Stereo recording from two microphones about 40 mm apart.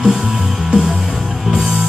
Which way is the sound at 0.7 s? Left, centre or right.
Right.